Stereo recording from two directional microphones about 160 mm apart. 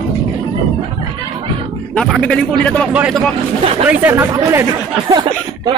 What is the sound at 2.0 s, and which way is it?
Speech, 5° left (ahead or behind).